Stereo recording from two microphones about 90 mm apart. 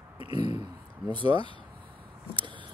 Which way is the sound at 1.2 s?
90° left.